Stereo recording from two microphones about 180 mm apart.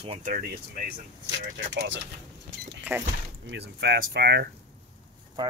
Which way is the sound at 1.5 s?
75° right (ahead or behind).